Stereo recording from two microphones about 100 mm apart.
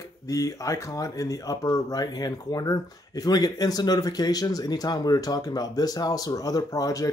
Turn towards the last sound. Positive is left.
turn(degrees=35)  # may be behind; listen again after turning